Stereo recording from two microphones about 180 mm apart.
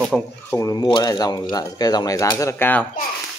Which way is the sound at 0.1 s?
Centre (ahead or behind).